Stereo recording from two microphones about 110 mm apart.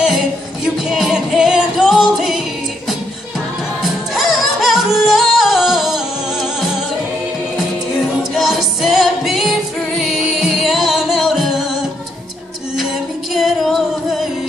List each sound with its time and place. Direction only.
0.7 s music: centre (ahead or behind)
4.1 s music: centre (ahead or behind)
8.2 s music: 5° right (ahead or behind)
13.3 s music: centre (ahead or behind)